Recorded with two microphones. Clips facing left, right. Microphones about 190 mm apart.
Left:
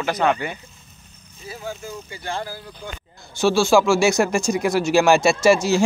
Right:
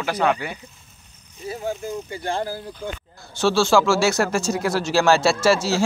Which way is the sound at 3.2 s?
10° left (ahead or behind).